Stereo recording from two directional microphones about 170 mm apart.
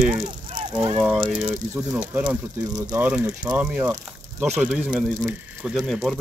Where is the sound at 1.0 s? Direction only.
5° right (ahead or behind).